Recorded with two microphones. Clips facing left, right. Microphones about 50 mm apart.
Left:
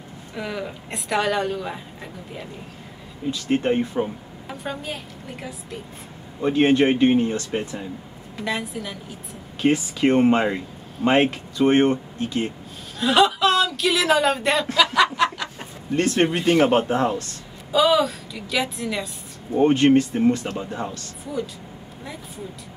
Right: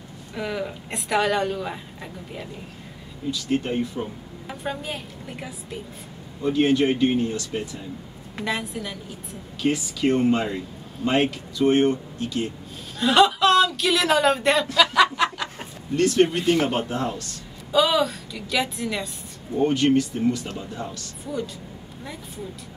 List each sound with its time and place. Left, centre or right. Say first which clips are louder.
0.3 s speech: right 1 dB; centre
3.3 s speech: left 4 dB; left
4.5 s speech: even; centre
6.4 s speech: left 2 dB; left
8.5 s speech: left 1 dB; centre
9.6 s speech: left 4 dB; left
13.0 s speech: even; centre
15.1 s chicken: left 2 dB; centre
16.0 s speech: right 1 dB; left
17.6 s speech: left 2 dB; centre
19.5 s speech: left 4 dB; left